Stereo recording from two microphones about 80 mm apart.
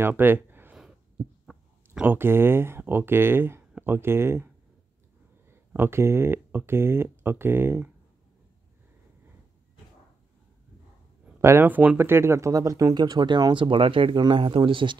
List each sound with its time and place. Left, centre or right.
0.0 s speech: right
1.4 s a sound: centre
2.0 s speech: right
5.7 s speech: right
11.4 s speech: right
12.9 s speech: right